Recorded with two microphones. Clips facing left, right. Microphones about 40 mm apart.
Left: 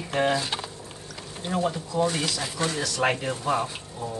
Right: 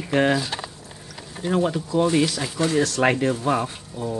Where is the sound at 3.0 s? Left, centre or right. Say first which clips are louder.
Right 2 dB; right.